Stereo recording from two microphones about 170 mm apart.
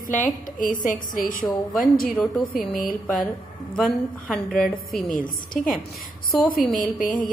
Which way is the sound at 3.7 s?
Centre (ahead or behind).